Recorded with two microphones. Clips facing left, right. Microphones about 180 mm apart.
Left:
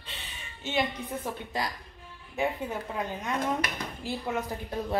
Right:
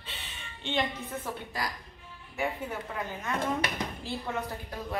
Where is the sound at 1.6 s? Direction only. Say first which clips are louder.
Left 3 dB; 25° left (ahead or behind).